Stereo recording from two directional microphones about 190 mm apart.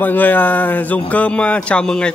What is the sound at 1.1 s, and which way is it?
Speech, 5° left (ahead or behind).